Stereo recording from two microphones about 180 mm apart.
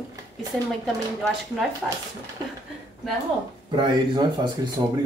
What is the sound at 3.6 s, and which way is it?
Speech, 25° right (ahead or behind).